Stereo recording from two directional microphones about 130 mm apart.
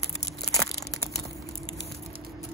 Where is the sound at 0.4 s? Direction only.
25° left (ahead or behind).